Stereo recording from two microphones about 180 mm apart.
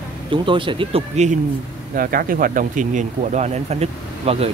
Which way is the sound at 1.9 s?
55° right (ahead or behind).